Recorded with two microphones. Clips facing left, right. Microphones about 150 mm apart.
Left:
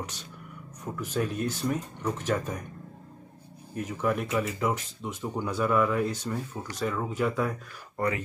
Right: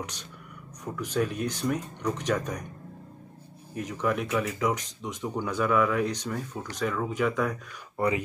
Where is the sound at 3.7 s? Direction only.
5° left (ahead or behind).